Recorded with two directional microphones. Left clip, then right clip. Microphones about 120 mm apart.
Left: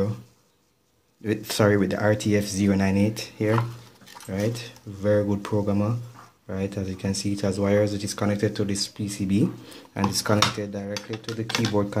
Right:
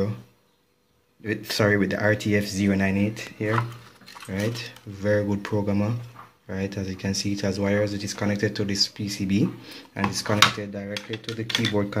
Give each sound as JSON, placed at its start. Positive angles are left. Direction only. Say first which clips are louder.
{"t": 1.2, "sound": "speech", "louder": "left 1 dB", "side_deg": 25}
{"t": 4.3, "sound": "speech", "louder": "left 1 dB", "side_deg": 5}
{"t": 7.7, "sound": "speech", "louder": "left 2 dB", "side_deg": 20}
{"t": 8.3, "sound": "speech", "louder": "even", "side_deg": 5}
{"t": 9.9, "sound": "speech", "louder": "right 1 dB", "side_deg": 25}
{"t": 11.7, "sound": "speech", "louder": "left 1 dB", "side_deg": 0}